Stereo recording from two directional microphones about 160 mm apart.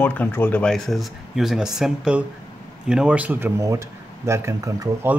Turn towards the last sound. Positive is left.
turn(degrees=-20)  # may be behind; listen again after turning